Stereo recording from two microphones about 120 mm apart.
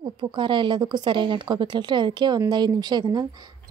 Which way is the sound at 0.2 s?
40° right (ahead or behind).